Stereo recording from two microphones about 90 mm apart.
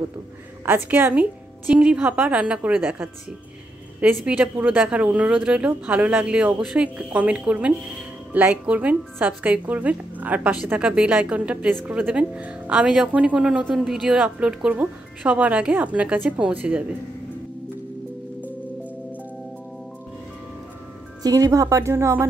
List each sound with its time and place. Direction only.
0.7 s a woman's voice: 20° right (ahead or behind)
4.2 s speech: 15° right (ahead or behind)
21.2 s speech: 40° right (ahead or behind)